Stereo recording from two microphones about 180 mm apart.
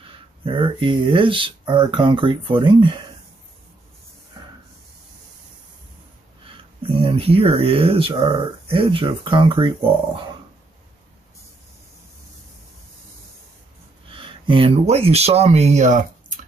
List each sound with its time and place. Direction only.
0.0 s speech: 30° right (ahead or behind)
6.8 s speech: 30° right (ahead or behind)
14.1 s speech: 30° right (ahead or behind); by 16.3 s 45° right (ahead or behind)